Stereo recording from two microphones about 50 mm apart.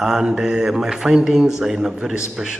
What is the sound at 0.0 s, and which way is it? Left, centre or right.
Speech, centre.